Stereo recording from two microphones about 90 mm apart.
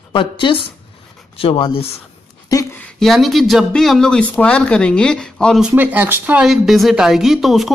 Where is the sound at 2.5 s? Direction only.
40° left (ahead or behind).